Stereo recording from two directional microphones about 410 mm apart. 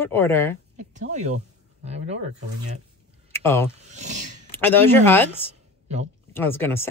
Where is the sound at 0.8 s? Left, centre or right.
Centre.